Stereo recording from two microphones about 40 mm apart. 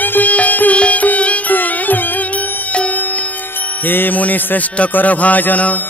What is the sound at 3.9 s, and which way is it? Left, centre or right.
Music, left.